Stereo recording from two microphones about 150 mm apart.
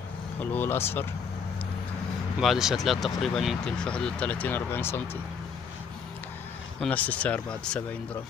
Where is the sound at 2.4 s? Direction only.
Centre (ahead or behind); by 5.2 s 15° left (ahead or behind).